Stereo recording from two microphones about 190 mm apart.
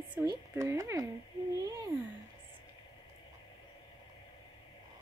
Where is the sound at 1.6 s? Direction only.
15° right (ahead or behind).